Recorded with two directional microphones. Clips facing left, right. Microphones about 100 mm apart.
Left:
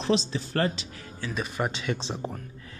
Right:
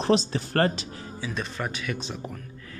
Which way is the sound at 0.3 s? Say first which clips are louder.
Right 3 dB; 50° right (ahead or behind).